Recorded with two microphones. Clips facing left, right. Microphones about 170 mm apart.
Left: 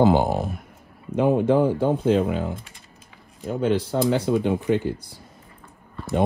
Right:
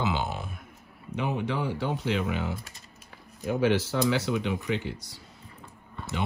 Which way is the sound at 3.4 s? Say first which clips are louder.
Left 2 dB; 75° right (ahead or behind).